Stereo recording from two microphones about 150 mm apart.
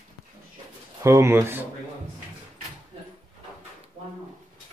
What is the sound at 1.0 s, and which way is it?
Speech, 20° right (ahead or behind).